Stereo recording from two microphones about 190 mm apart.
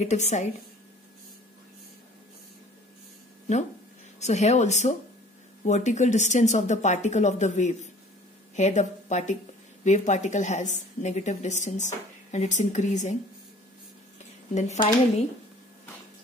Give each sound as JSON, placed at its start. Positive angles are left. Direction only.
{"t": 0.0, "sound": "a woman's voice", "side_deg": 40}
{"t": 4.2, "sound": "a woman's voice", "side_deg": 35}
{"t": 14.5, "sound": "a woman's voice", "side_deg": 35}